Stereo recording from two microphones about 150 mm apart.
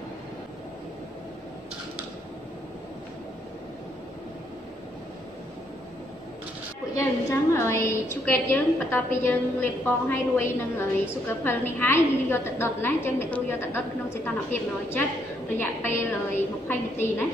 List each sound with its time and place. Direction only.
6.9 s a woman's voice: 20° left (ahead or behind)